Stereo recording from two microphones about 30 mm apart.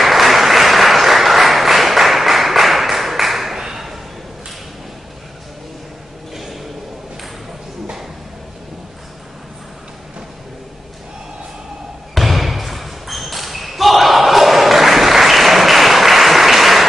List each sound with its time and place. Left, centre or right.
0.0 s applause: centre
3.6 s ping: centre
6.3 s a sound: centre
12.1 s basketball bounce: centre